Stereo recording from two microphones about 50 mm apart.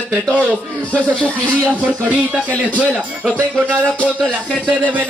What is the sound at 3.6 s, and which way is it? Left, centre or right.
Speech, right.